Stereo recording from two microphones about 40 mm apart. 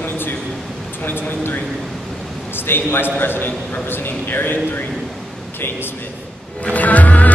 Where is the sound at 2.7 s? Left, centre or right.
Left.